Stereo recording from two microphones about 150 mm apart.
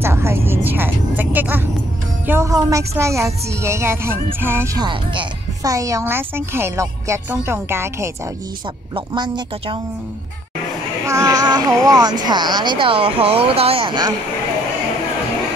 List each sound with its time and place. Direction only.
0.0 s music: 15° right (ahead or behind)
2.2 s a woman's voice: 20° right (ahead or behind)
4.7 s a woman's voice: 30° right (ahead or behind)
8.9 s speech: 30° right (ahead or behind)
11.1 s a woman's voice: 20° right (ahead or behind)